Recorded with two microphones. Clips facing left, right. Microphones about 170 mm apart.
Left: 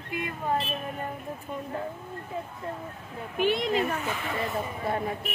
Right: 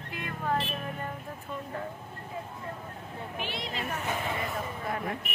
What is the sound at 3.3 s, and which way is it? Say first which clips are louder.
Speech: left 13 dB; 50° left (ahead or behind).